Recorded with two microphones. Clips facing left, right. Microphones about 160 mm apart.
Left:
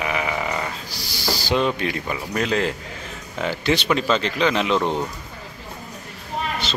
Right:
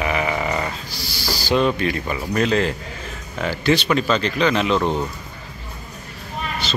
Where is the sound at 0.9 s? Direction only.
15° left (ahead or behind).